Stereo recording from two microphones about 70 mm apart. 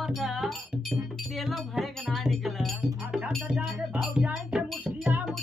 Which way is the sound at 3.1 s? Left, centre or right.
Centre.